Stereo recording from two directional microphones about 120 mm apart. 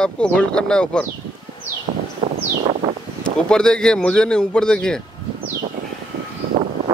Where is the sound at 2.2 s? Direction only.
40° right (ahead or behind).